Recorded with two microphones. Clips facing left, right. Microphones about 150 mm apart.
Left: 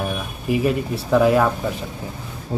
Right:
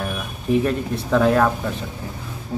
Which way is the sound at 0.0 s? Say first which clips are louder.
Left 2 dB; 10° left (ahead or behind).